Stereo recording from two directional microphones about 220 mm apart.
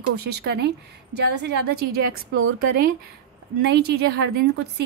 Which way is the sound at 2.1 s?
70° right (ahead or behind).